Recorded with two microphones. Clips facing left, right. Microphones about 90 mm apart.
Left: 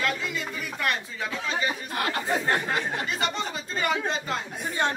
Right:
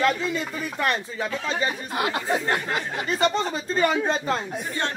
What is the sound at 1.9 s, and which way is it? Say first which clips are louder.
Speech: right 3 dB; 15° right (ahead or behind).